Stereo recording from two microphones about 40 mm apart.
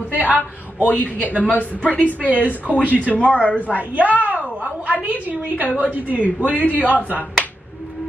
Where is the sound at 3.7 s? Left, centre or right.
Right.